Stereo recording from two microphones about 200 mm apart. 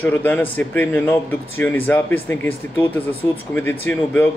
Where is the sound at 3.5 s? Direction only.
10° left (ahead or behind).